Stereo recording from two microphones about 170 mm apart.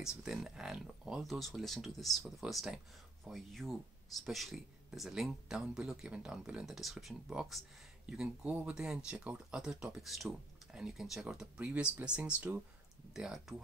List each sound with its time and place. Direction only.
0.0 s speech: 5° right (ahead or behind)